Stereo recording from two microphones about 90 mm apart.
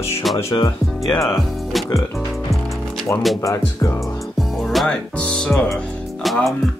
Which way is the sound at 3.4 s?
35° left (ahead or behind).